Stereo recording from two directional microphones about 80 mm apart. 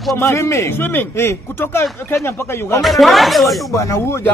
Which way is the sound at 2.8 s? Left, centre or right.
Centre.